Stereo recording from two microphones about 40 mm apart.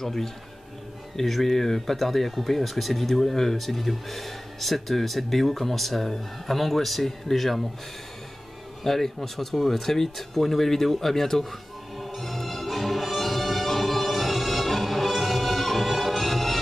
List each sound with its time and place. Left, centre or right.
0.0 s speech: centre
8.8 s speech: centre
12.0 s music: centre